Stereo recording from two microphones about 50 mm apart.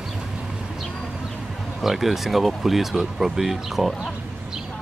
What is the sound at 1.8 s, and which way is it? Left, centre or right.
Speech, centre.